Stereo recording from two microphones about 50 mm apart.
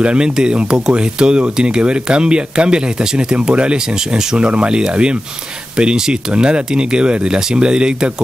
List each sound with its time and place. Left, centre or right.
0.0 s speech: right